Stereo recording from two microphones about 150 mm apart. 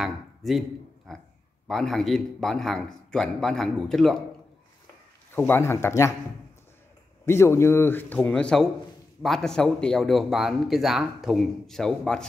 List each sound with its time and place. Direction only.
0.0 s speech: centre (ahead or behind)
5.5 s a man's voice: 15° left (ahead or behind)
7.2 s a man's voice: 15° left (ahead or behind)